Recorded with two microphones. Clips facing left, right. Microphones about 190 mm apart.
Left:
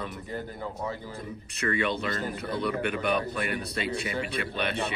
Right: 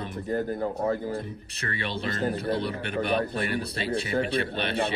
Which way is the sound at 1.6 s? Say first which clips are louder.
Left 4 dB; 30° right (ahead or behind).